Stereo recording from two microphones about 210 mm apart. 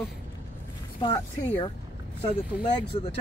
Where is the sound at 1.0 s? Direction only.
25° left (ahead or behind).